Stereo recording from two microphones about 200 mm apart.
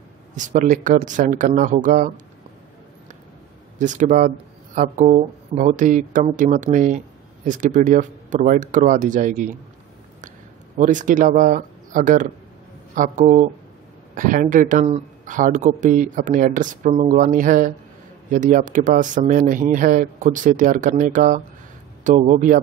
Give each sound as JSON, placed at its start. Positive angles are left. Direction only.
{"t": 0.4, "sound": "speech", "side_deg": -40}
{"t": 3.7, "sound": "speech", "side_deg": -40}
{"t": 10.8, "sound": "speech", "side_deg": -40}